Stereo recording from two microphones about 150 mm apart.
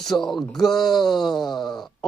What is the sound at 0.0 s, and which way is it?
Speech, centre (ahead or behind).